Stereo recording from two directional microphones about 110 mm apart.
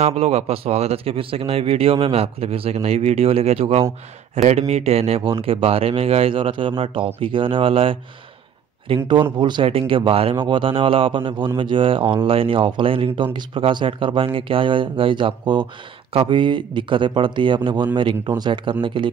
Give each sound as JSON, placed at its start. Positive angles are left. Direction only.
{"t": 0.0, "sound": "a man's voice", "side_deg": -75}
{"t": 4.4, "sound": "a man's voice", "side_deg": -85}